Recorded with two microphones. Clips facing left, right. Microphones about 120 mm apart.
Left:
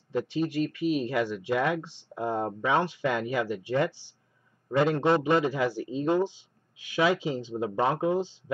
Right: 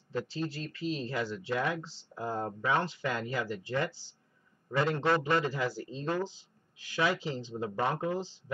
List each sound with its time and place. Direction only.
0.1 s speech: 15° left (ahead or behind)